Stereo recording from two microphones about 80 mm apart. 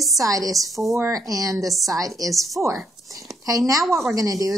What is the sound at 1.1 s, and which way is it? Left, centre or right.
Speech, right.